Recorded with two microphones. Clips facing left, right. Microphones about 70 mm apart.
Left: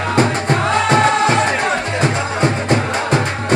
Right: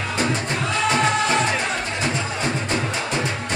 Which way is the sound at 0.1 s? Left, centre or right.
Left.